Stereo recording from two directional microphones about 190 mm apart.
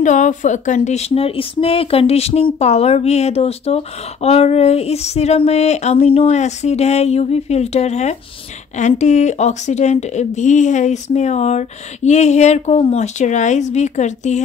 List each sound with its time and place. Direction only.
0.0 s speech: 40° left (ahead or behind)